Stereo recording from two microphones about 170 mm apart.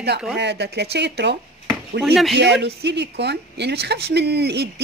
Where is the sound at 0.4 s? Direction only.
80° right.